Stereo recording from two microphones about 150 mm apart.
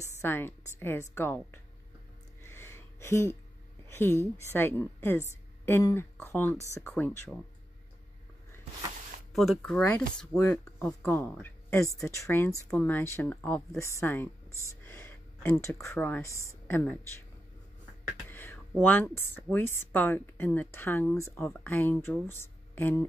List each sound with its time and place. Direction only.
0.2 s speech: 15° left (ahead or behind)
2.4 s gasp: 15° left (ahead or behind)
3.9 s a woman's voice: 15° left (ahead or behind)
9.3 s speech: centre (ahead or behind); by 16.8 s 15° left (ahead or behind)
18.3 s a sound: 15° left (ahead or behind)
18.8 s speech: 10° left (ahead or behind)